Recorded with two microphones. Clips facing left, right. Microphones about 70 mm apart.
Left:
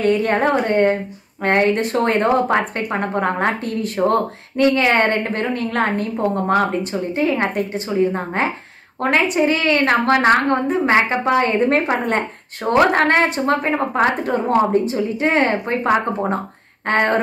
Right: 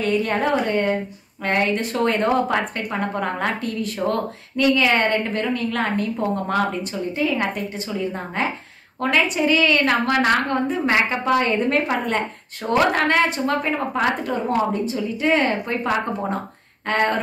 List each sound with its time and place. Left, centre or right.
0.0 s speech: left